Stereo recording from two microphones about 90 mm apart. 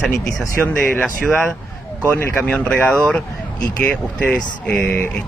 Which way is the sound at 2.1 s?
30° left (ahead or behind).